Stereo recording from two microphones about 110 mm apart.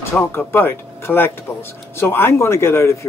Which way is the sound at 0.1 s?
20° left (ahead or behind).